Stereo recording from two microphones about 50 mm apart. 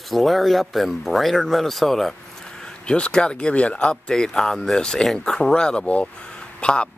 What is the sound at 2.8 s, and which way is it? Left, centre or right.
Speech, left.